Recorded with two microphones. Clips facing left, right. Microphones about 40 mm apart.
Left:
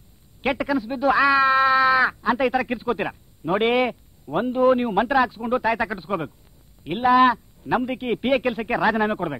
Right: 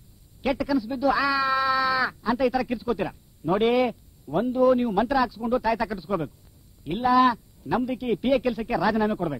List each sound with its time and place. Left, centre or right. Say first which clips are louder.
0.4 s speech: left 2 dB; left